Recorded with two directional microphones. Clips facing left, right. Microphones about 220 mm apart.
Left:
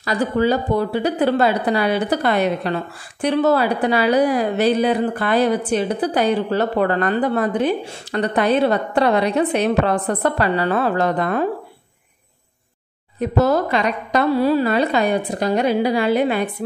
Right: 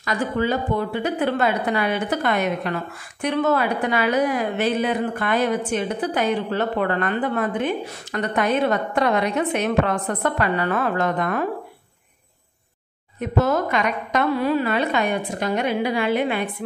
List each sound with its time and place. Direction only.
0.0 s speech: 35° left (ahead or behind)
13.2 s speech: 35° left (ahead or behind)